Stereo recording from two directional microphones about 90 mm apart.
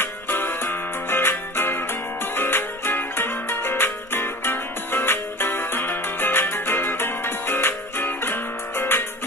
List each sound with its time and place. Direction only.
0.0 s music: 25° left (ahead or behind)